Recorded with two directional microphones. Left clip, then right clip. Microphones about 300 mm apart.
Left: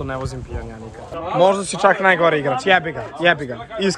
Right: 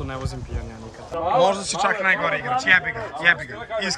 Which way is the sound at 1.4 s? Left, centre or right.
Centre.